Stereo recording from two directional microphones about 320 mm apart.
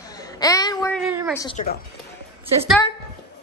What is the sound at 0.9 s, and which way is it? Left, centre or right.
Speech, centre.